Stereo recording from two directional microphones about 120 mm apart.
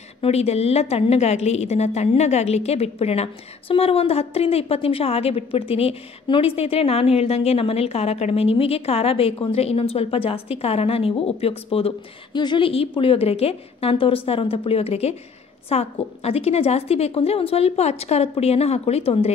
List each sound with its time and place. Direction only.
0.2 s a woman's voice: 60° left (ahead or behind)
12.3 s a woman's voice: 40° left (ahead or behind); by 19.3 s 60° left (ahead or behind)